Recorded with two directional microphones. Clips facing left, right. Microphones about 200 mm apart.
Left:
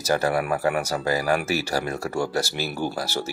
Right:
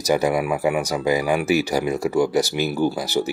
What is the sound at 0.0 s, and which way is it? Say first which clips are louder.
Speech: right 3 dB; 15° right (ahead or behind).